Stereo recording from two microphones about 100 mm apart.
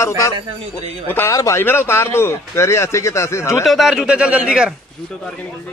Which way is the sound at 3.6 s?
Centre (ahead or behind).